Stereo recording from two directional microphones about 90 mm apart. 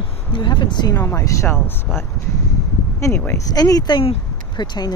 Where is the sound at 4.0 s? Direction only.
65° left (ahead or behind).